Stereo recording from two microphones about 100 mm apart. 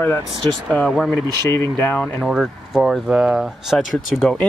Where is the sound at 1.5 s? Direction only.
20° left (ahead or behind).